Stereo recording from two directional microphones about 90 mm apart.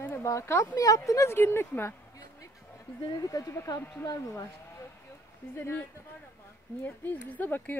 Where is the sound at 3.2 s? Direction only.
40° left (ahead or behind).